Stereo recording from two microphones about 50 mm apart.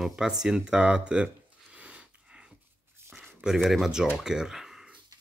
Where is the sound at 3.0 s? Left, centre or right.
Right.